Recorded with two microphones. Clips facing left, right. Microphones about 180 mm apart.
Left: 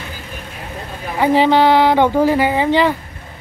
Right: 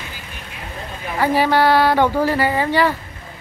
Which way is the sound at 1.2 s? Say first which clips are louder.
Left 4 dB; 20° left (ahead or behind).